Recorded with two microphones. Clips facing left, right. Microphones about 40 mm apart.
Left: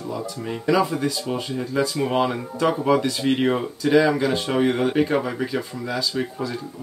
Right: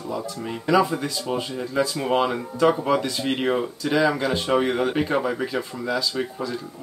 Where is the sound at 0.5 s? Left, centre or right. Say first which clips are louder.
Even; centre.